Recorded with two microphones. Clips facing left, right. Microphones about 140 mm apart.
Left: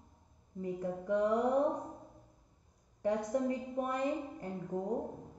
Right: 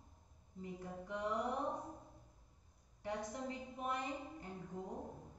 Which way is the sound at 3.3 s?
55° left (ahead or behind).